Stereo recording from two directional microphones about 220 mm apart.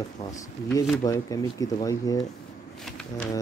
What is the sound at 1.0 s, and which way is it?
Speech, 15° left (ahead or behind).